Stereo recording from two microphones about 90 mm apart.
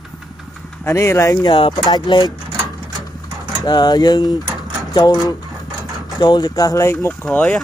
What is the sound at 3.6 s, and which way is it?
Speech, 50° left (ahead or behind).